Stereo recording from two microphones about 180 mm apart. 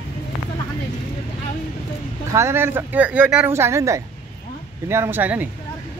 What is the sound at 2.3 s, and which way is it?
Speech, 15° right (ahead or behind).